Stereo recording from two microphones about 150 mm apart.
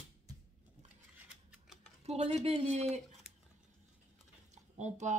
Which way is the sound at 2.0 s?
45° right (ahead or behind).